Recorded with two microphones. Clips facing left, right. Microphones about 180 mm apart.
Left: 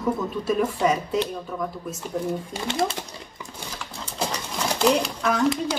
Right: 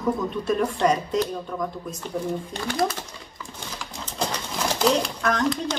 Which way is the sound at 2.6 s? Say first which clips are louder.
Right 1 dB; 25° left (ahead or behind).